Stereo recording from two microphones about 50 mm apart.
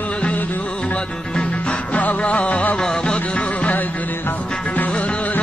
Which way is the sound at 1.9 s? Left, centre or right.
Left.